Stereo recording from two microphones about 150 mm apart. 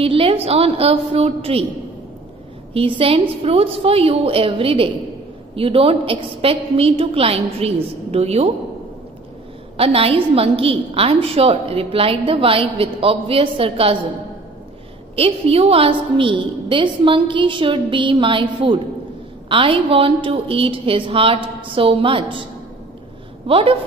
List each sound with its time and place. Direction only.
0.0 s a woman's voice: 40° right (ahead or behind)
2.7 s a woman's voice: 35° right (ahead or behind)
9.8 s a woman's voice: 40° right (ahead or behind)
15.1 s a woman's voice: 40° right (ahead or behind)
23.4 s a woman's voice: 40° right (ahead or behind)